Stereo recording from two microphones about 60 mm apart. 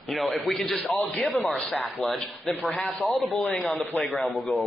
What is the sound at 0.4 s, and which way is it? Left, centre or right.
A man's voice, centre.